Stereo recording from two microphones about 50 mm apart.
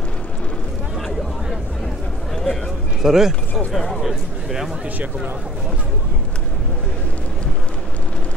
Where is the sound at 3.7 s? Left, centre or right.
Centre.